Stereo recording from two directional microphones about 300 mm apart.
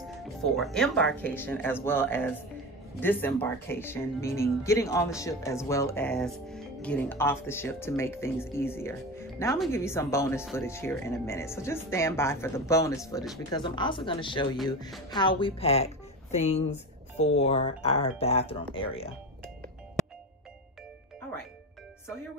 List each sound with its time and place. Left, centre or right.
0.4 s speech: centre